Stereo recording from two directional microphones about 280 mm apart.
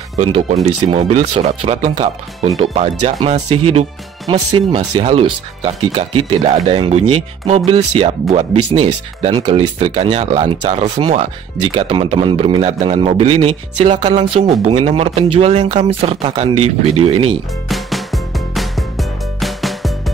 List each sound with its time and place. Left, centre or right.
0.2 s speech: right
4.7 s speech: right
17.6 s music: centre